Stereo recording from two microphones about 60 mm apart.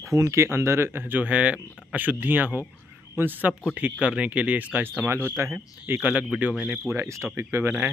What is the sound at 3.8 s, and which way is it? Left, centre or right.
Speech, centre.